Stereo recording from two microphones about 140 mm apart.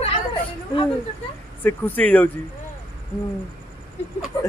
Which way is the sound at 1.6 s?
15° left (ahead or behind).